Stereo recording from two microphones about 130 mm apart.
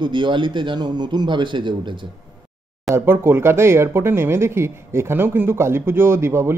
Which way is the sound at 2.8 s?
20° right (ahead or behind).